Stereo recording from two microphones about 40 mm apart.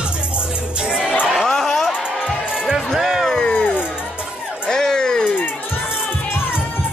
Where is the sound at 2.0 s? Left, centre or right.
Right.